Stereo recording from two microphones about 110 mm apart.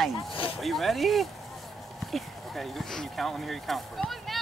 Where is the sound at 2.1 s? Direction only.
Centre (ahead or behind).